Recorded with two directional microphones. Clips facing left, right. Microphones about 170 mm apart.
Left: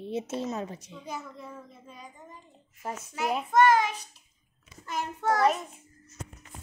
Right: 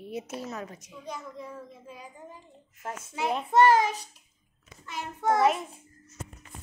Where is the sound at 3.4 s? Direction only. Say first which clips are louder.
Right 1 dB; 30° right (ahead or behind).